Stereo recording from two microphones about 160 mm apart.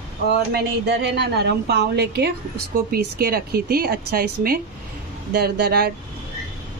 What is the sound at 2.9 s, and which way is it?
Speech, 70° right (ahead or behind).